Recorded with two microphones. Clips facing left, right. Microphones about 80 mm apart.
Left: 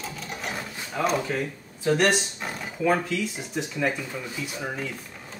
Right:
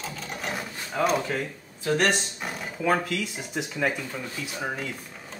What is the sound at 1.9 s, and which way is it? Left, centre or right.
Speech, centre.